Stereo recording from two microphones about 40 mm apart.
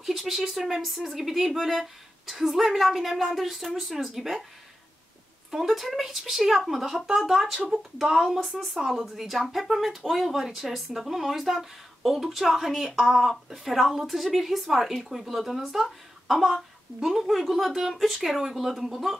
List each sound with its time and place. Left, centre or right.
0.0 s speech: centre
5.5 s speech: centre